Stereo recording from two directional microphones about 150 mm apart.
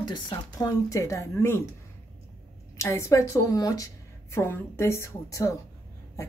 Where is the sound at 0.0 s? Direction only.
30° left (ahead or behind).